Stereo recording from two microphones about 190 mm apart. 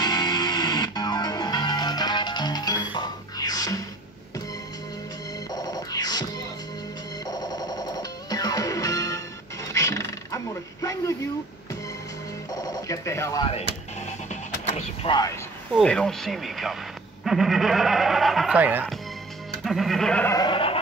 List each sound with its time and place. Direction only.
0.0 s music: 20° left (ahead or behind)
5.5 s music: 20° left (ahead or behind)
7.2 s music: 20° left (ahead or behind)
12.4 s telephone: 20° left (ahead or behind)
13.6 s music: 35° left (ahead or behind)
15.7 s speech: 5° left (ahead or behind)
20.3 s a sound: 25° left (ahead or behind)